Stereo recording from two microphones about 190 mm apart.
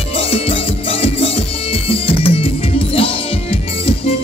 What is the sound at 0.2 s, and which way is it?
Music, 30° left (ahead or behind).